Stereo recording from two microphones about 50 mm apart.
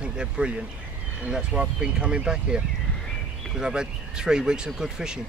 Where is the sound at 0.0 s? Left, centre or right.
Centre.